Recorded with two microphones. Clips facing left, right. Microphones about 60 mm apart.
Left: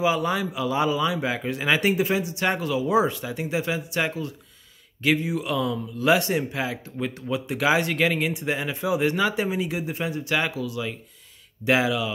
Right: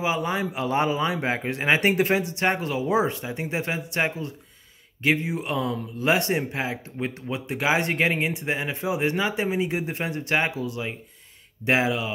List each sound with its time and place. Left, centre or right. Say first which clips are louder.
0.0 s a man's voice: left 2 dB; right
0.5 s speech: even; right